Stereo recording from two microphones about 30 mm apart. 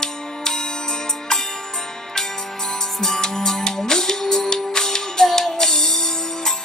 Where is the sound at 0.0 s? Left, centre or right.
Left.